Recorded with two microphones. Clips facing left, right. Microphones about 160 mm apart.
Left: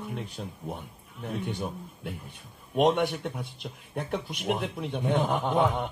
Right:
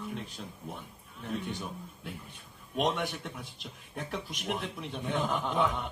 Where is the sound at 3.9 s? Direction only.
40° left (ahead or behind).